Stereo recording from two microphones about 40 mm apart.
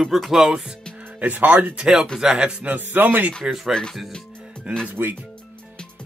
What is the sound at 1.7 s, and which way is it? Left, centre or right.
Speech, centre.